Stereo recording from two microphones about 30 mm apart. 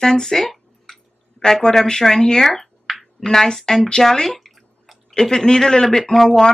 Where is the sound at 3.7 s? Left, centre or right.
Left.